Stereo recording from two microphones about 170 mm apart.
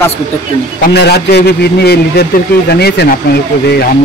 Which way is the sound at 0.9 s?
75° left (ahead or behind).